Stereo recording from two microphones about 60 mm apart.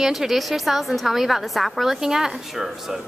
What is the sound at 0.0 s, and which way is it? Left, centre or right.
A woman's voice, centre.